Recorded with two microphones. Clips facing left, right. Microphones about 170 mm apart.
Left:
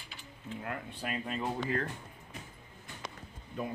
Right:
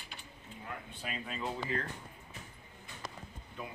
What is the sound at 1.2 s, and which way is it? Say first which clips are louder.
Speech: left 2 dB; 50° left (ahead or behind).